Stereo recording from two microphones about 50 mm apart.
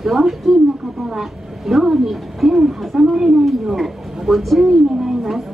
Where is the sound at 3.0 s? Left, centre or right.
Centre.